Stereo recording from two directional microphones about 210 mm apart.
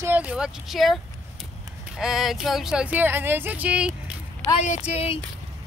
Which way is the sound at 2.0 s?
Centre (ahead or behind).